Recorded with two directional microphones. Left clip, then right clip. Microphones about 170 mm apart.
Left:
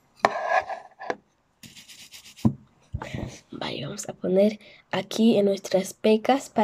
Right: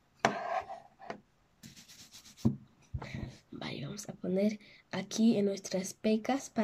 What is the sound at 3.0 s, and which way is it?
Dog, 45° left (ahead or behind).